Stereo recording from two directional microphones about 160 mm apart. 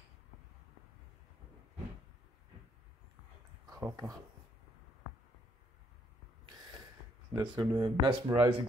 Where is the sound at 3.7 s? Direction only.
20° right (ahead or behind).